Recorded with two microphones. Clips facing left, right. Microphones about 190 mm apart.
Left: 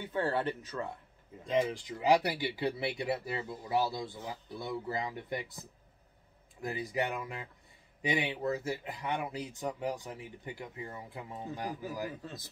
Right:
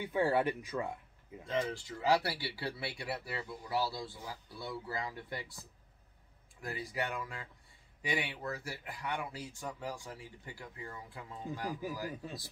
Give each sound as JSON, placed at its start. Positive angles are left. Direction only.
{"t": 0.0, "sound": "speech", "side_deg": -10}
{"t": 1.4, "sound": "speech", "side_deg": 15}